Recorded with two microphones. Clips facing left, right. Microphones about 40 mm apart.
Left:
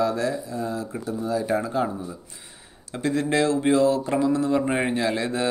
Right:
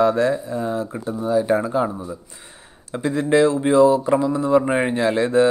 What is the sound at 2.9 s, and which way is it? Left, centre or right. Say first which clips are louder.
A man's voice: right 5 dB; centre.